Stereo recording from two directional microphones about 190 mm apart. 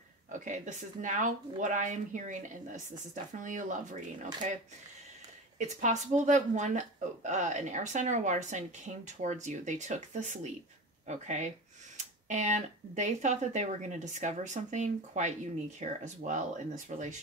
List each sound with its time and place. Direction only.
0.3 s a woman's voice: 40° right (ahead or behind)
5.6 s a woman's voice: 40° right (ahead or behind)